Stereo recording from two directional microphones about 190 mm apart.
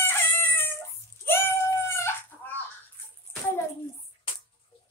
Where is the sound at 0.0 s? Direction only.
10° left (ahead or behind).